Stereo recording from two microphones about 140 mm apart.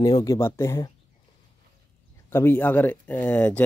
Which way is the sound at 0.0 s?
25° left (ahead or behind).